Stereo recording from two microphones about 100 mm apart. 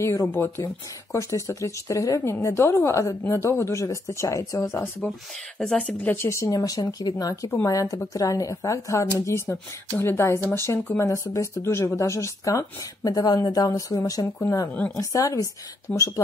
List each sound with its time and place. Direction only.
0.0 s a woman's voice: 30° left (ahead or behind)
5.3 s speech: 5° left (ahead or behind); by 6.6 s 25° left (ahead or behind)
6.6 s a woman's voice: 40° left (ahead or behind)